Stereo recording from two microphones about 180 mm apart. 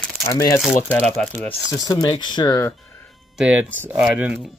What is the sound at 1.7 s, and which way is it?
Speech, 20° left (ahead or behind).